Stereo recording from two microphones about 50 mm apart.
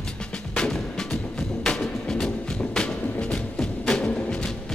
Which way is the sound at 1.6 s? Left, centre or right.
Centre.